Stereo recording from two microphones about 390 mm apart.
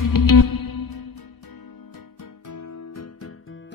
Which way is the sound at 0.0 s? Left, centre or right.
Left.